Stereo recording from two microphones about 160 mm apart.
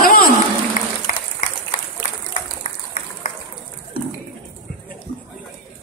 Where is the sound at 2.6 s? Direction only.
55° left (ahead or behind).